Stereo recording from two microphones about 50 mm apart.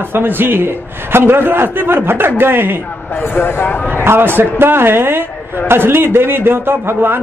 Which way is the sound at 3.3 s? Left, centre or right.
Left.